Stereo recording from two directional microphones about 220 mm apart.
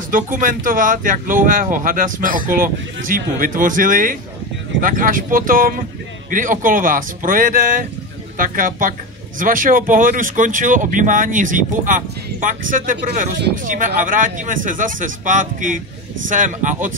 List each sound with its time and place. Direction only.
0.1 s speech: 40° right (ahead or behind)